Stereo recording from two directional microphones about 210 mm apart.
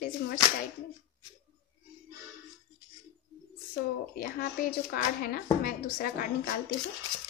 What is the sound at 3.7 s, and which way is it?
A child's voice, 45° left (ahead or behind).